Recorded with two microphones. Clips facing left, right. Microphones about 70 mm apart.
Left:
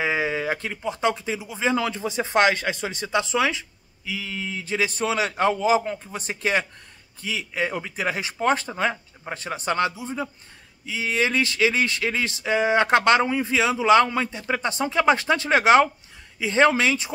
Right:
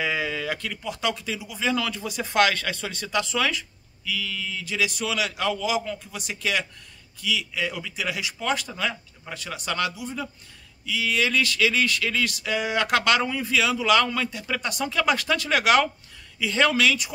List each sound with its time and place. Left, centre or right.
0.0 s speech: left